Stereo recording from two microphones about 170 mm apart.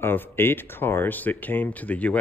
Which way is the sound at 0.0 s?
10° left (ahead or behind).